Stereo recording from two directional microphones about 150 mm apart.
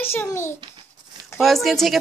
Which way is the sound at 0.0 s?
15° left (ahead or behind).